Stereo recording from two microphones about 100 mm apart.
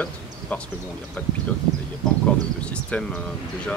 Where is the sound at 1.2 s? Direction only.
15° left (ahead or behind).